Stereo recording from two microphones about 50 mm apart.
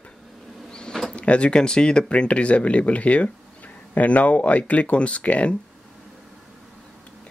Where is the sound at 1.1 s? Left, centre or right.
Left.